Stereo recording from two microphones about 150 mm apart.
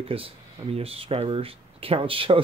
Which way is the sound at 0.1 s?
40° right (ahead or behind).